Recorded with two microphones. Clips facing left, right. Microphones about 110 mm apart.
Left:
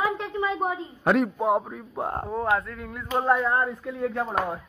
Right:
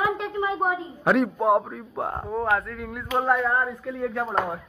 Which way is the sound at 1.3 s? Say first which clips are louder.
Right 3 dB; 15° right (ahead or behind).